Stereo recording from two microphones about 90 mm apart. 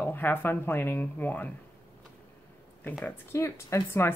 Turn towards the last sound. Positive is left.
turn(degrees=25)  # may be behind; listen again after turning